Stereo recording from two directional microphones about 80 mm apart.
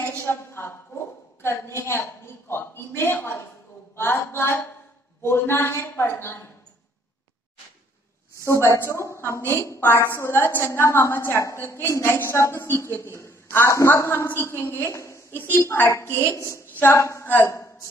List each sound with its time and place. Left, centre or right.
0.2 s a woman's voice: left
8.5 s a woman's voice: left
15.3 s a woman's voice: left